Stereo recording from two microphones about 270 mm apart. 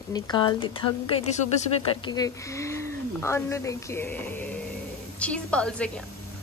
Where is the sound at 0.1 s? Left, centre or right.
Centre.